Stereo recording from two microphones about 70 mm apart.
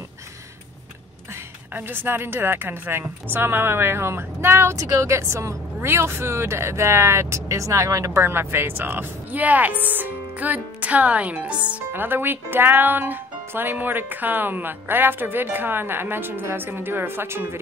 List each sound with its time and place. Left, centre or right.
1.7 s speech: right
4.7 s speech: right; by 11.8 s centre
11.9 s speech: right